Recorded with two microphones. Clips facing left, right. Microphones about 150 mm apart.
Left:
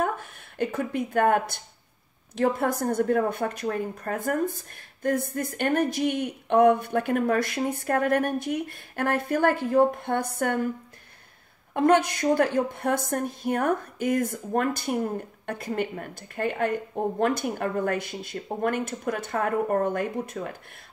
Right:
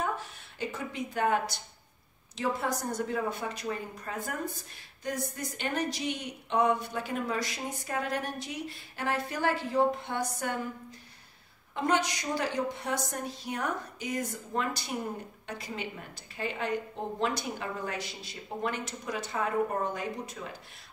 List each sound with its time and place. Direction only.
0.0 s a woman's voice: 55° left (ahead or behind)
11.7 s a woman's voice: 55° left (ahead or behind)